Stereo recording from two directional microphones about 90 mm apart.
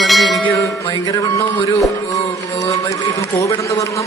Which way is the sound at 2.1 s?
40° left (ahead or behind).